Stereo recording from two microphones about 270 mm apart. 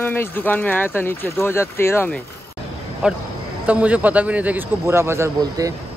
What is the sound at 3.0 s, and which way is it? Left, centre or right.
Speech, centre.